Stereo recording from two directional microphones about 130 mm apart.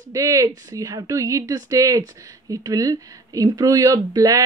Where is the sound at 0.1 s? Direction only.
25° right (ahead or behind).